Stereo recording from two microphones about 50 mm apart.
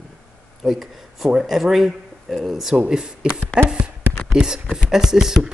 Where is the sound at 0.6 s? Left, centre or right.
Centre.